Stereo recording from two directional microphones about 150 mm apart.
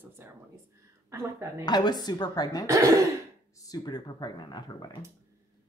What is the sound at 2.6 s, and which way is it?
Speech, 20° right (ahead or behind).